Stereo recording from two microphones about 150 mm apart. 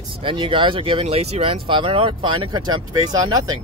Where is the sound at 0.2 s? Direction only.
35° right (ahead or behind).